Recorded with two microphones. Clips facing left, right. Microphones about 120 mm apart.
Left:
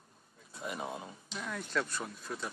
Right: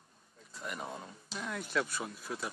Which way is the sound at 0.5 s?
20° left (ahead or behind).